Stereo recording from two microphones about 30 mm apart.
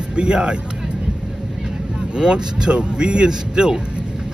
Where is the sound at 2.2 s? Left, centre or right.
Right.